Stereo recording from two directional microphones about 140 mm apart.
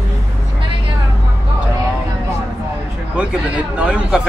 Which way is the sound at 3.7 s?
10° right (ahead or behind).